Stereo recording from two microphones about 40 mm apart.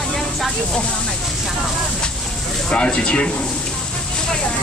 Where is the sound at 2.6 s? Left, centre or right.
Left.